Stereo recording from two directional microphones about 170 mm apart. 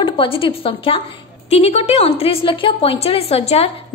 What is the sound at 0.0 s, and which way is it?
A woman's voice, 30° left (ahead or behind).